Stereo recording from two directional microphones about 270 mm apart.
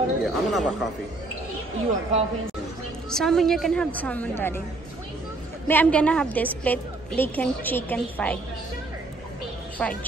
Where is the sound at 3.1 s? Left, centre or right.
Centre.